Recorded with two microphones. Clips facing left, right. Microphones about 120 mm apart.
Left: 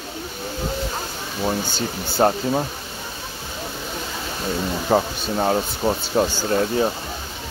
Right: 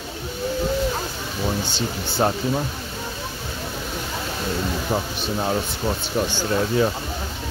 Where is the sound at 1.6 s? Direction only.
40° left (ahead or behind).